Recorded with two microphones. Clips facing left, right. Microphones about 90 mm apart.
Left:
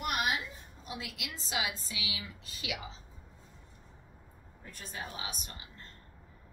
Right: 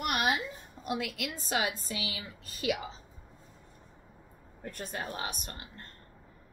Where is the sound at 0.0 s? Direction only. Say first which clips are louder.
Right 2 dB; 70° right (ahead or behind).